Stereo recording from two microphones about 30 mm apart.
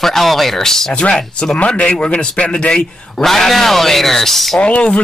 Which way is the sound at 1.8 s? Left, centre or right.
Left.